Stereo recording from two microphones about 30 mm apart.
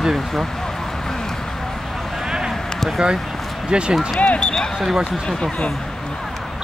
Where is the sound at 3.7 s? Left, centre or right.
Right.